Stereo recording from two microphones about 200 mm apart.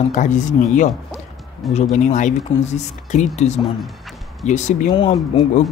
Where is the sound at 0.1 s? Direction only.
40° left (ahead or behind).